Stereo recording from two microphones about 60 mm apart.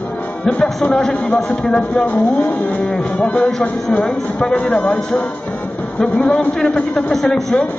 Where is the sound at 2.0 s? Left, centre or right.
Left.